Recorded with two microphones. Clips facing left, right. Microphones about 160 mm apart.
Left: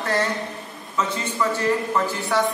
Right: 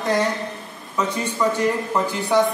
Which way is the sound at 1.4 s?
15° right (ahead or behind).